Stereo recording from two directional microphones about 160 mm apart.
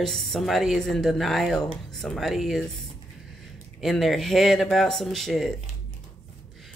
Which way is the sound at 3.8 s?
Centre (ahead or behind).